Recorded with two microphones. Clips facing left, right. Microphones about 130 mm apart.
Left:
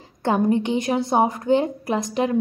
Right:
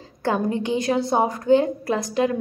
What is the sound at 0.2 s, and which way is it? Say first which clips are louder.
A woman's voice: left 3 dB; 20° left (ahead or behind).